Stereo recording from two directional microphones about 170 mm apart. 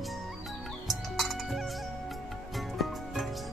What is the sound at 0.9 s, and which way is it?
Music, centre (ahead or behind).